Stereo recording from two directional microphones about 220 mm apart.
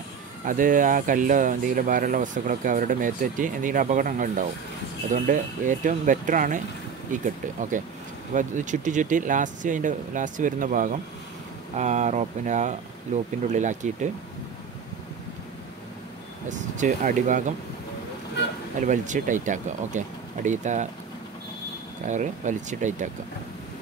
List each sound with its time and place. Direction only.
0.5 s speech: 35° right (ahead or behind)
16.4 s speech: 35° right (ahead or behind)
18.8 s speech: 35° right (ahead or behind)
22.0 s speech: 35° right (ahead or behind)